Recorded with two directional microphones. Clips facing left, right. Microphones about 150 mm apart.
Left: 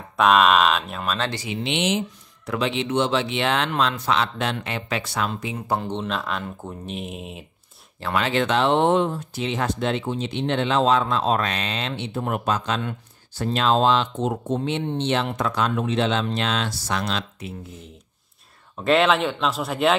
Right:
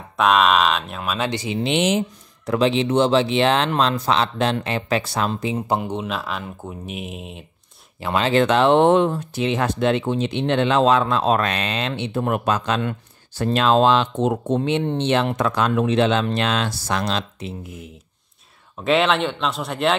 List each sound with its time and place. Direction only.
0.2 s speech: centre (ahead or behind)
1.3 s speech: 25° right (ahead or behind)
1.6 s speech: 40° right (ahead or behind)
5.8 s speech: 10° right (ahead or behind)
8.3 s speech: 45° right (ahead or behind)
17.1 s speech: 25° right (ahead or behind)
18.8 s speech: centre (ahead or behind)